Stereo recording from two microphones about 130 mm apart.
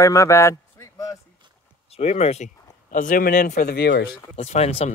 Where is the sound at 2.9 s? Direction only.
90° left.